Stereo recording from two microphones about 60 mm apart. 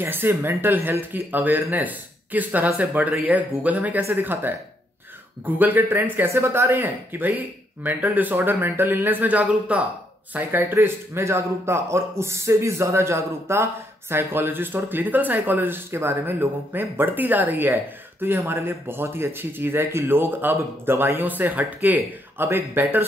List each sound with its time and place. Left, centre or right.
0.0 s speech: right
10.3 s speech: right